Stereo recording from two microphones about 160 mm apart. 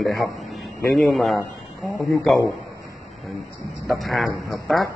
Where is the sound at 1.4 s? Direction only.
20° left (ahead or behind).